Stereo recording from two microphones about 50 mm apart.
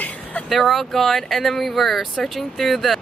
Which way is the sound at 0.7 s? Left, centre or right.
Centre.